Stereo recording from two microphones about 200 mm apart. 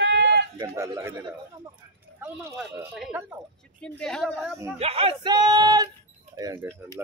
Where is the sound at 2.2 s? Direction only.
10° right (ahead or behind).